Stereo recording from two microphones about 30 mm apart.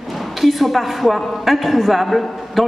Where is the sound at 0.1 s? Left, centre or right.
Centre.